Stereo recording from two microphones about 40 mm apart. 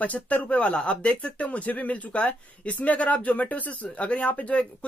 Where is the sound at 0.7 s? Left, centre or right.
Left.